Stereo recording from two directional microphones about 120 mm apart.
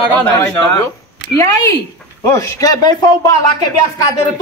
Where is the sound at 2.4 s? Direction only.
30° left (ahead or behind).